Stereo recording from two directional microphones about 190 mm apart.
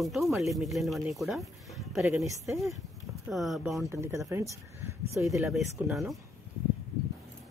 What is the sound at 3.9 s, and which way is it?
Speech, 15° right (ahead or behind).